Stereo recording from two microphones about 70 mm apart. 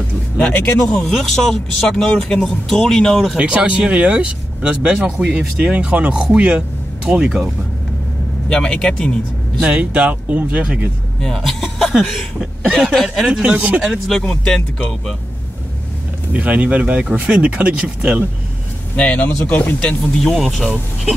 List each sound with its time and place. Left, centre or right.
0.8 s speech: centre
3.3 s speech: centre
8.5 s a man's voice: centre
9.6 s speech: centre
11.1 s a man's voice: centre
11.6 s chuckle: centre
12.7 s speech: centre
13.3 s speech: centre
13.8 s a man's voice: centre
16.3 s speech: centre
18.9 s a man's voice: centre
20.2 s speech: centre